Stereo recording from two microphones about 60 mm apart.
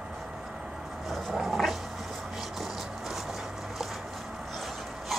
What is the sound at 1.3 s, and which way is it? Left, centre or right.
Dog, centre.